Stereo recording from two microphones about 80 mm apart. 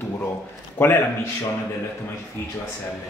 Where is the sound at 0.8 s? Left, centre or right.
Left.